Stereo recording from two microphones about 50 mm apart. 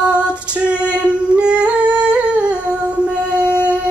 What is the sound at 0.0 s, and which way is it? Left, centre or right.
Female singing, right.